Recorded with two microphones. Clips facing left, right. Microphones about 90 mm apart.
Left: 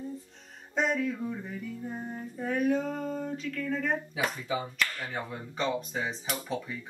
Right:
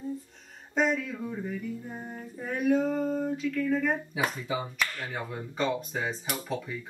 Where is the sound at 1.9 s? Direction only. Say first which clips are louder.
Left 2 dB; 5° left (ahead or behind).